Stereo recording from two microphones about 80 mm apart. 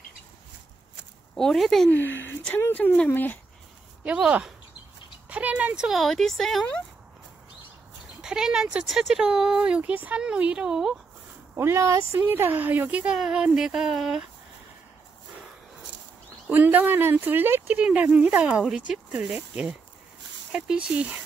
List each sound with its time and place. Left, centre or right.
1.3 s speech: centre
1.9 s speech: left
4.0 s speech: centre
5.9 s speech: centre
8.2 s speech: centre
11.5 s speech: right
12.2 s speech: right; by 14.2 s centre
16.4 s speech: centre
17.7 s speech: centre